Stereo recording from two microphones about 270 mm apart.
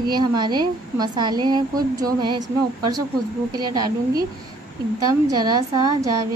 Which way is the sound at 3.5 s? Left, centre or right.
Centre.